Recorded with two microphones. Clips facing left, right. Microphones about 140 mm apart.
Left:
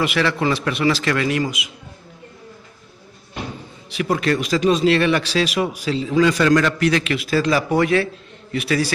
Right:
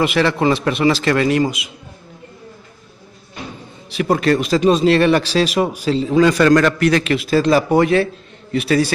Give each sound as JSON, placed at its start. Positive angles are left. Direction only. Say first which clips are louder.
{"t": 0.0, "sound": "speech", "louder": "right 4 dB", "side_deg": -30}
{"t": 3.9, "sound": "speech", "louder": "right 4 dB", "side_deg": -40}
{"t": 7.2, "sound": "speech", "louder": "right 4 dB", "side_deg": -30}